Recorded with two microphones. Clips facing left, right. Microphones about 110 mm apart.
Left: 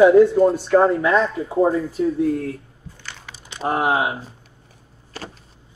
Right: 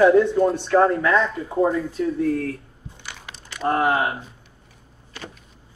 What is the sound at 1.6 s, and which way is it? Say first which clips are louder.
Speech: left 2 dB; 35° left (ahead or behind).